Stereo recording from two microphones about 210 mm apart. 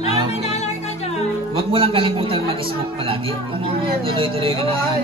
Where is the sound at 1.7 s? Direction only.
25° right (ahead or behind).